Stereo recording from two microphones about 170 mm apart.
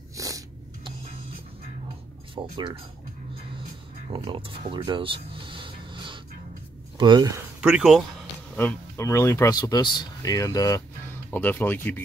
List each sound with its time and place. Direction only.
0.1 s a sound: 20° right (ahead or behind)
2.3 s speech: 30° right (ahead or behind)
4.1 s a sound: 30° right (ahead or behind)
7.0 s speech: 25° right (ahead or behind)
7.6 s speech: 5° right (ahead or behind)
8.5 s speech: 15° left (ahead or behind)